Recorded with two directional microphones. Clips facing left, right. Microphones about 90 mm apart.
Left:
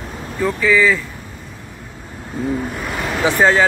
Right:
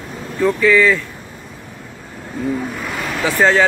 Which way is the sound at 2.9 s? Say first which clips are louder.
Left 3 dB; 15° left (ahead or behind).